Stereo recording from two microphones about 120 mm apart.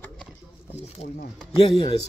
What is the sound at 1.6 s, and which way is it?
Speech, 50° left (ahead or behind).